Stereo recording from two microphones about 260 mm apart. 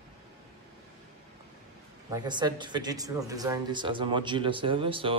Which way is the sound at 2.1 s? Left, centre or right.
Centre.